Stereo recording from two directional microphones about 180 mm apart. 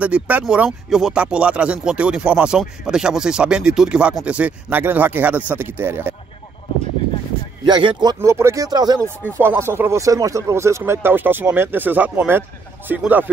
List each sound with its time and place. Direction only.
0.0 s speech: 10° right (ahead or behind)
7.6 s speech: 25° right (ahead or behind); by 13.3 s 10° right (ahead or behind)